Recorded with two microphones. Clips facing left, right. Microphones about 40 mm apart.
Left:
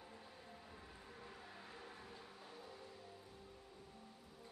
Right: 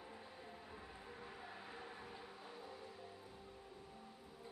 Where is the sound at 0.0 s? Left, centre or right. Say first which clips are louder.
Right 3 dB; centre.